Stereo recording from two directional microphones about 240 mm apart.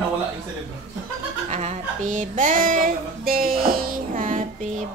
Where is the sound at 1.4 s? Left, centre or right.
Right.